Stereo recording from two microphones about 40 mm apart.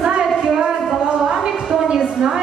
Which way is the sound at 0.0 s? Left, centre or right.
Centre.